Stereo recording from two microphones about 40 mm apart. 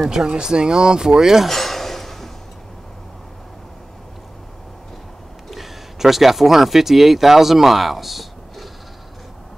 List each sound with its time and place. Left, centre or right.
0.1 s speech: centre
1.5 s a sound: centre
5.5 s speech: centre